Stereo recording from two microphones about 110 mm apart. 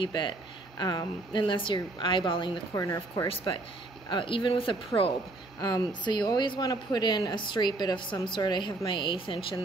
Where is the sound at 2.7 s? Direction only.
30° left (ahead or behind).